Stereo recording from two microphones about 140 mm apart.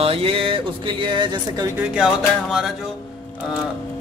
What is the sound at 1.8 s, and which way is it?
Speech, 5° right (ahead or behind).